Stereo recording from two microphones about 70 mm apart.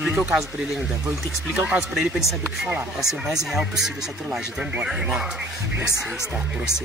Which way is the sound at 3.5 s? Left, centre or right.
Centre.